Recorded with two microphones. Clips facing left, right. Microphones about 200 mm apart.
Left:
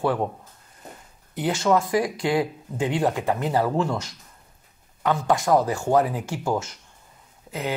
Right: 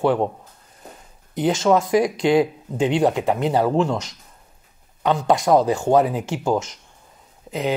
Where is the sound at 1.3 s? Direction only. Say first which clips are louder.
Right 4 dB; 20° right (ahead or behind).